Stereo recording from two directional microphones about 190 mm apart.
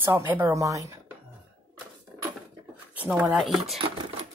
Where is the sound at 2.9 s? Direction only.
10° right (ahead or behind).